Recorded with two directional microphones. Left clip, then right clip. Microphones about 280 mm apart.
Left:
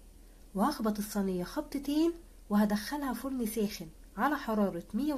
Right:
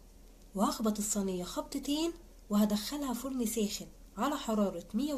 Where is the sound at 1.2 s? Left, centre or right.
Left.